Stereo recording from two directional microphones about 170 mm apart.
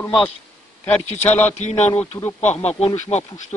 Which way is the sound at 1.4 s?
40° left (ahead or behind).